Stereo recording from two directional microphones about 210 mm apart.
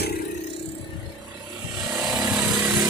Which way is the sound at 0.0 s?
45° left (ahead or behind).